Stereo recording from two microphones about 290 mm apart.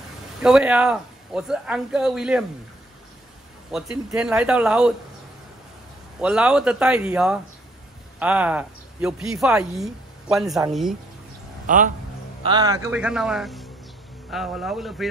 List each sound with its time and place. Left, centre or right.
0.4 s speech: centre
3.7 s speech: centre
6.2 s speech: centre
11.6 s speech: right
12.4 s speech: centre